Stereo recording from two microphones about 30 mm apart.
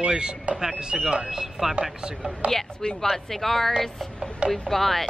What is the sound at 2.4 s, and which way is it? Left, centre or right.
Speech, right.